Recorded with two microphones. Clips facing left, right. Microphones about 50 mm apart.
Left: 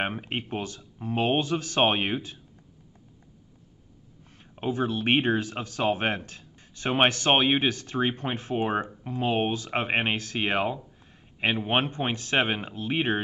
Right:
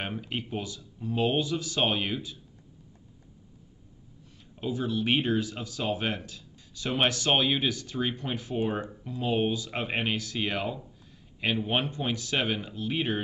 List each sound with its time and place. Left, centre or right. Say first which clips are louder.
0.0 s speech: left 4 dB; left
4.6 s speech: left 2 dB; left